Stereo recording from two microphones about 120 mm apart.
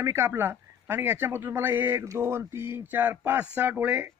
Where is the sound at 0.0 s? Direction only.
25° right (ahead or behind).